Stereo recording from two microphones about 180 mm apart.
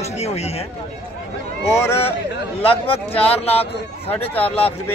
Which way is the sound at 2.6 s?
30° left (ahead or behind).